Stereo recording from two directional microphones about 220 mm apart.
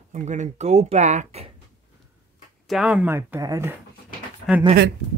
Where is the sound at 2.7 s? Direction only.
5° right (ahead or behind).